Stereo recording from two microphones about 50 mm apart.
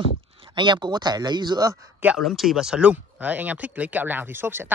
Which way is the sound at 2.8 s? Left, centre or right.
Right.